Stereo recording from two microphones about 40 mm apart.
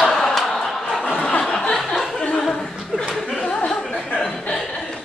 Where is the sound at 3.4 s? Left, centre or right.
Left.